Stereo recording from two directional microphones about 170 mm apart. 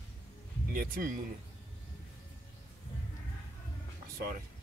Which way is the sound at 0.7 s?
55° right (ahead or behind).